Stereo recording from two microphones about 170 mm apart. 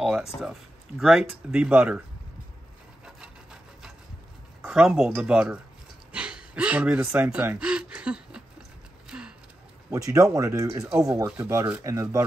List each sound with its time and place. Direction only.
0.0 s speech: 5° right (ahead or behind)
4.6 s speech: 5° right (ahead or behind)
9.1 s a sound: 5° right (ahead or behind)
9.8 s speech: 20° right (ahead or behind)